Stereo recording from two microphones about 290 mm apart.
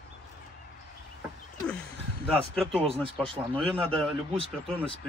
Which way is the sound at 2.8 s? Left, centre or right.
Centre.